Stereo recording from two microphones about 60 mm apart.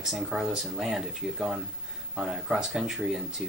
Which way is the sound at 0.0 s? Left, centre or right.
Centre.